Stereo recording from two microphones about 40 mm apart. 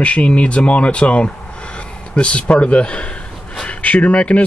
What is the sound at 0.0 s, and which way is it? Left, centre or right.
Speech, left.